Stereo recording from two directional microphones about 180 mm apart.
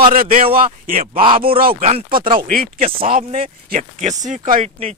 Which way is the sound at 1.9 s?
30° right (ahead or behind).